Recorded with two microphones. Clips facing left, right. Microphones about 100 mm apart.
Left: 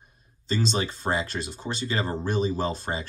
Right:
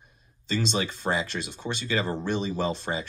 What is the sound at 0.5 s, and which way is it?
Speech, 40° left (ahead or behind).